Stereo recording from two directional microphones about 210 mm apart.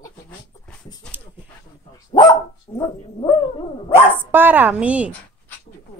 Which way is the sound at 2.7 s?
20° left (ahead or behind).